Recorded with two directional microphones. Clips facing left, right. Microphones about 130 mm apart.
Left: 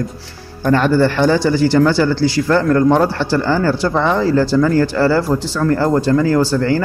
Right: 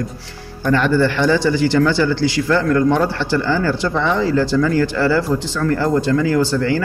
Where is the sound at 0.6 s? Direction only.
40° left (ahead or behind).